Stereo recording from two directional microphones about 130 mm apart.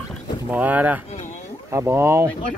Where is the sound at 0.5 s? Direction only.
10° right (ahead or behind).